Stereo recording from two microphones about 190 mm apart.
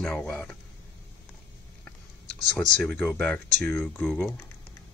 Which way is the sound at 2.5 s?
5° left (ahead or behind).